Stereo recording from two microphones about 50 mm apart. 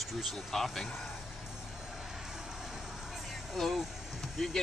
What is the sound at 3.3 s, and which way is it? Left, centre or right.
Music, centre.